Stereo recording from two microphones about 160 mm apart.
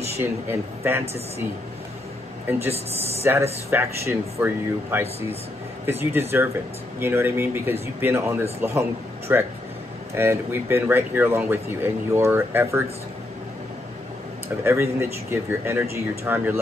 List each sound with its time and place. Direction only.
0.2 s speech: 15° right (ahead or behind)
3.3 s speech: 15° right (ahead or behind)
14.6 s speech: 15° right (ahead or behind)